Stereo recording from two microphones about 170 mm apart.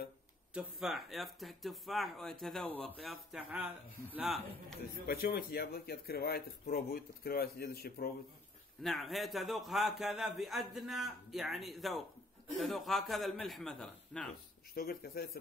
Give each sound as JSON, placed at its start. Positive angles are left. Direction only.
{"t": 0.6, "sound": "a man's voice", "side_deg": 0}
{"t": 5.0, "sound": "speech", "side_deg": 65}
{"t": 8.8, "sound": "a man's voice", "side_deg": 0}
{"t": 14.7, "sound": "speech", "side_deg": 65}